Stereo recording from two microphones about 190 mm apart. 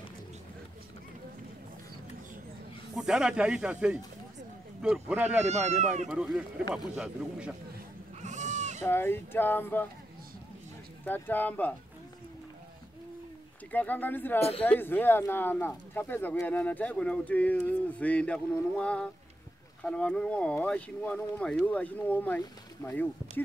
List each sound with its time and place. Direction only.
3.0 s speech: 5° right (ahead or behind)
5.4 s speech: 35° right (ahead or behind)
6.0 s speech: 5° right (ahead or behind)
8.2 s goat: 40° right (ahead or behind)
8.8 s speech: 10° left (ahead or behind)
11.1 s speech: 10° left (ahead or behind)
13.7 s speech: 10° left (ahead or behind)